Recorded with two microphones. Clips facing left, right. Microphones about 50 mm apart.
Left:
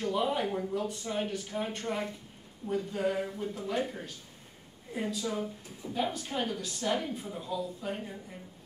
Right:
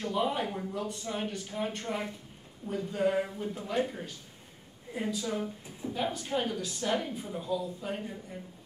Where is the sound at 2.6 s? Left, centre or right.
Right.